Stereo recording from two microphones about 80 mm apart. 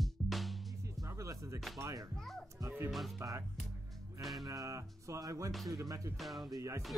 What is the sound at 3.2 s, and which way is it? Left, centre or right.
Speech, right.